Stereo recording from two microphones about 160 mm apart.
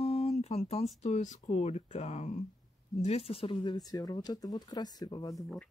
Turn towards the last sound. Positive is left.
turn(degrees=0)  # may be behind; listen again after turning